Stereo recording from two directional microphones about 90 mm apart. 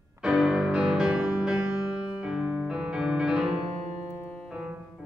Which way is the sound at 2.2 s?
10° right (ahead or behind).